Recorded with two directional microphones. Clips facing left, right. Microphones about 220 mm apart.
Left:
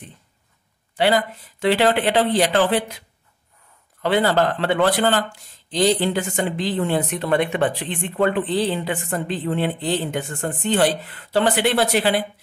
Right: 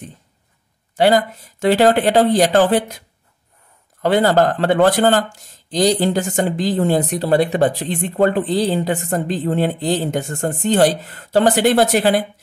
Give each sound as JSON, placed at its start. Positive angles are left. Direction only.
{"t": 0.9, "sound": "speech", "side_deg": -45}
{"t": 4.0, "sound": "speech", "side_deg": -45}